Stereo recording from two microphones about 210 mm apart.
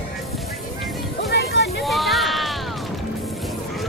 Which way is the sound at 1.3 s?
50° left (ahead or behind).